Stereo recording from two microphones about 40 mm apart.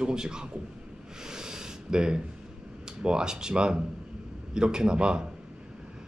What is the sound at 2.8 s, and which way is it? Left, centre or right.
A man's voice, centre.